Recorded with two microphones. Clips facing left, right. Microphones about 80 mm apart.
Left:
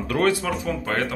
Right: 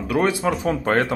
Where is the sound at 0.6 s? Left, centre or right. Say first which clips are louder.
Right 5 dB; right.